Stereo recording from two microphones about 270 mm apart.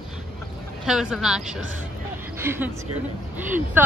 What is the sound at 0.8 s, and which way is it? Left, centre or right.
A woman's voice, centre.